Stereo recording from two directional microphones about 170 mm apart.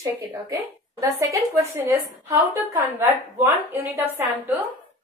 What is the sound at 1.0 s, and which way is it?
A woman's voice, 15° right (ahead or behind).